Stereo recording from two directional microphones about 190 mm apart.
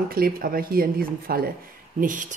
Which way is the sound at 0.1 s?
50° right (ahead or behind).